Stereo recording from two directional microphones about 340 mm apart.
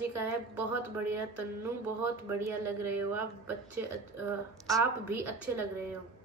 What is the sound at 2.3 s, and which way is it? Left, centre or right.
A woman's voice, centre.